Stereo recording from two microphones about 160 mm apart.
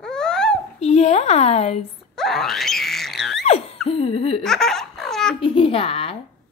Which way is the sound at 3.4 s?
40° left (ahead or behind).